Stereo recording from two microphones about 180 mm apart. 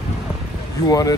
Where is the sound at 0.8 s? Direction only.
20° left (ahead or behind).